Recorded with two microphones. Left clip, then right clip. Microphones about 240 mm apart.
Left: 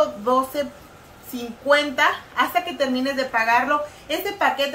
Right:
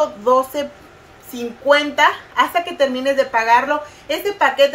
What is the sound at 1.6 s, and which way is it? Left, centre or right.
Speech, right.